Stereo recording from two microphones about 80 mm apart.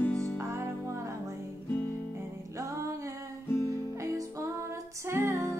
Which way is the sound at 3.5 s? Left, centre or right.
Left.